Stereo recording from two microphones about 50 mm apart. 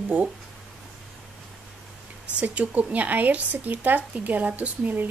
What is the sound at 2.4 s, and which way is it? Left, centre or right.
Speech, right.